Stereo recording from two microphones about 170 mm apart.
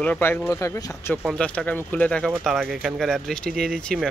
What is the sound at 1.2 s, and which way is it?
Speech, 5° left (ahead or behind).